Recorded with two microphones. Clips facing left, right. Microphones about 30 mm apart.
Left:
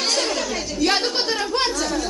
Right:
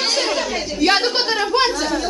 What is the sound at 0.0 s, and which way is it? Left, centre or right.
Chatter, centre.